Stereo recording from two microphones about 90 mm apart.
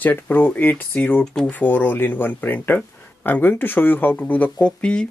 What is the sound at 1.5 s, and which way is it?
Speech, 20° left (ahead or behind).